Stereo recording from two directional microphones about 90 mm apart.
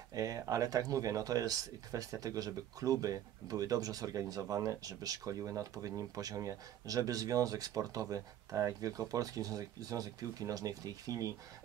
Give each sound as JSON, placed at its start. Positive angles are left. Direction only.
{"t": 0.1, "sound": "speech", "side_deg": -40}